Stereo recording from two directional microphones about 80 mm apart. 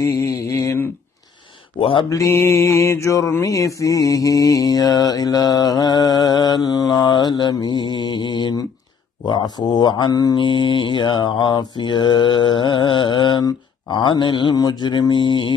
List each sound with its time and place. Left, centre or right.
0.0 s mantra: left
2.0 s mantra: left
9.2 s speech: left
10.4 s mantra: left
13.4 s speech: left
14.5 s speech: left